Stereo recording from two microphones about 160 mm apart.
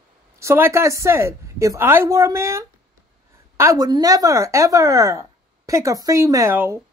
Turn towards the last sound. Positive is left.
turn(degrees=-15)  # may be behind; listen again after turning